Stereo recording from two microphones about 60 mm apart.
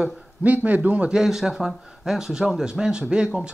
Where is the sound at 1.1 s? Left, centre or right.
Centre.